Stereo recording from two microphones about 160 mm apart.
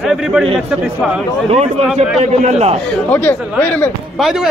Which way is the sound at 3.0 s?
10° left (ahead or behind).